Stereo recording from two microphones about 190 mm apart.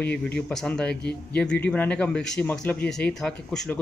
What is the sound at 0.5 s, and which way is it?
Speech, 5° left (ahead or behind).